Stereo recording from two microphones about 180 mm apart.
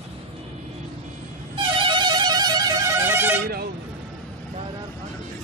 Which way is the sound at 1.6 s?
25° right (ahead or behind).